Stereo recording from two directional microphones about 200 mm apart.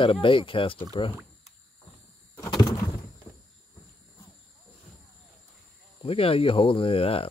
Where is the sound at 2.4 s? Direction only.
20° left (ahead or behind).